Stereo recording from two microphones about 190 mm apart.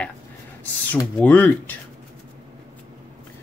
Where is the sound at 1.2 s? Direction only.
10° left (ahead or behind).